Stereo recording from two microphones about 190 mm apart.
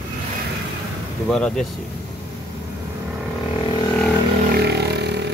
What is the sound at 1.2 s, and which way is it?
Speech, 5° left (ahead or behind).